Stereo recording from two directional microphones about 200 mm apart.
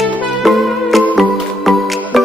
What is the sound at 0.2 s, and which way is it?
Music, centre (ahead or behind).